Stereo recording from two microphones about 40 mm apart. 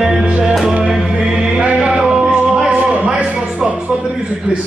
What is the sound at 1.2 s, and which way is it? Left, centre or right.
Chant, centre.